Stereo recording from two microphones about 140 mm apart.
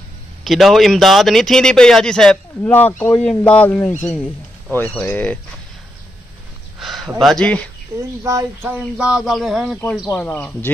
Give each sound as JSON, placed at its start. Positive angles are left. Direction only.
{"t": 0.4, "sound": "speech", "side_deg": 0}
{"t": 6.8, "sound": "a sound", "side_deg": 0}
{"t": 7.2, "sound": "speech", "side_deg": 5}
{"t": 8.2, "sound": "speech", "side_deg": -25}
{"t": 8.6, "sound": "speech", "side_deg": -10}
{"t": 10.0, "sound": "speech", "side_deg": 20}